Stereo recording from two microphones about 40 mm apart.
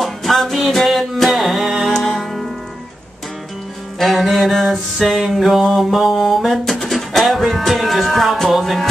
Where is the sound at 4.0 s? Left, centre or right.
Centre.